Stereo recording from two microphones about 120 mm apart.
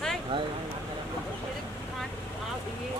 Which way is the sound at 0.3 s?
45° right (ahead or behind).